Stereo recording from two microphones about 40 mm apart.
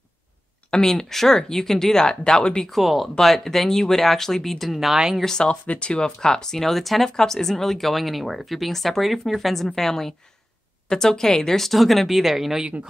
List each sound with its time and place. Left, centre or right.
0.7 s speech: centre
2.7 s speech: centre
4.7 s a woman's voice: centre
5.2 s speech: centre
5.5 s speech: left; by 12.6 s centre